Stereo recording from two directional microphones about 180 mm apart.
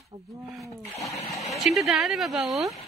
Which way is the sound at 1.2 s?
35° left (ahead or behind).